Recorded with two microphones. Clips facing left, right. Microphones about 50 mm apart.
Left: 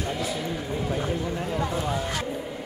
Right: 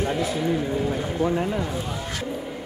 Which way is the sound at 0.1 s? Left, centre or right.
Right.